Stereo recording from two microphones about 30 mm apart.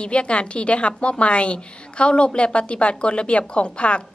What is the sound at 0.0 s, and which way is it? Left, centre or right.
A woman's voice, left.